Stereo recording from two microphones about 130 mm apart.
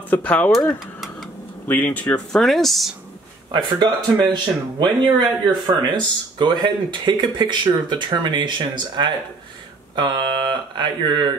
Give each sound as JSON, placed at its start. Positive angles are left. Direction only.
{"t": 0.1, "sound": "speech", "side_deg": 10}
{"t": 1.7, "sound": "speech", "side_deg": 10}
{"t": 3.5, "sound": "speech", "side_deg": -35}